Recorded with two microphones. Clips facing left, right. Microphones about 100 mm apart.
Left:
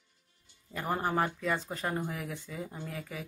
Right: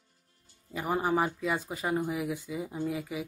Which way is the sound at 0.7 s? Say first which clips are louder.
Right 3 dB; 5° right (ahead or behind).